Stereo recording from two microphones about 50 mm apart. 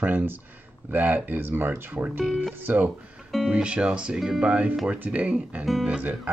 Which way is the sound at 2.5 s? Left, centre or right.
Right.